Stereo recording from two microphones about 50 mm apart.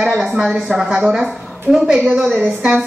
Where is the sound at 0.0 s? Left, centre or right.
Centre.